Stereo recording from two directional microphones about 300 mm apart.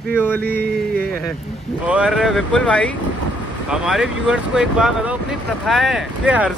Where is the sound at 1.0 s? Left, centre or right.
Centre.